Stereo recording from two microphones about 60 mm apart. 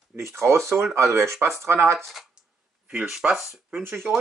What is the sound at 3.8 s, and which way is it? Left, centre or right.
Speech, right.